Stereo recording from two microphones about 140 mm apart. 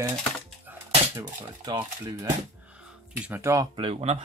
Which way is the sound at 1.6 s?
30° right (ahead or behind).